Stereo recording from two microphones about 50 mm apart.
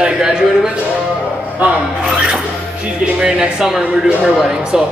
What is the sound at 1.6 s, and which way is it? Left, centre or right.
Speech, right.